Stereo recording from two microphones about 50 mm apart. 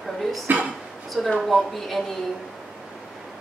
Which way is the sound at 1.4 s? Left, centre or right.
Centre.